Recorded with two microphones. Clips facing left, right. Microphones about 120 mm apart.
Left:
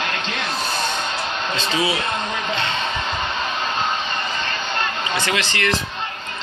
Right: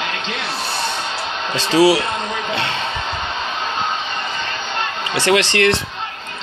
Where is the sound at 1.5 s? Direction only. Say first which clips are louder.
Right 10 dB; 75° right (ahead or behind).